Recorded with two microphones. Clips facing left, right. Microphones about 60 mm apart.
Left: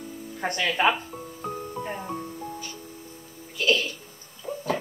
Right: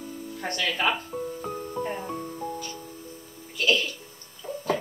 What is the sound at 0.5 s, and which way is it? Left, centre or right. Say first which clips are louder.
Speech: left 3 dB; centre.